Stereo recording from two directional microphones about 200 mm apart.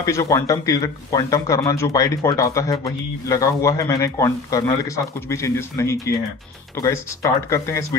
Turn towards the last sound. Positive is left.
turn(degrees=15)  # may be behind; listen again after turning